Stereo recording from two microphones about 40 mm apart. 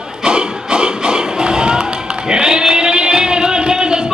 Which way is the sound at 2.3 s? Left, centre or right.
Centre.